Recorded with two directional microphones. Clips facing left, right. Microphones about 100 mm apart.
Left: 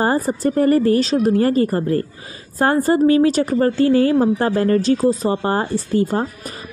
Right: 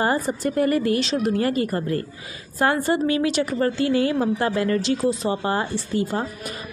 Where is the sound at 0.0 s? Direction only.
35° left (ahead or behind).